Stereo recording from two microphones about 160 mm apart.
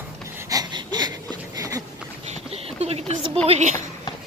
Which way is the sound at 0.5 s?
25° right (ahead or behind).